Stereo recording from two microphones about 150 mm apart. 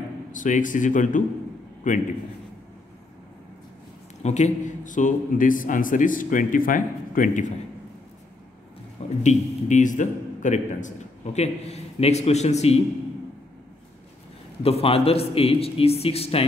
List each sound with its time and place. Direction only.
0.3 s a man's voice: 60° left (ahead or behind)
4.2 s a man's voice: 50° left (ahead or behind)
9.2 s a man's voice: 55° left (ahead or behind)
14.6 s a man's voice: 40° left (ahead or behind)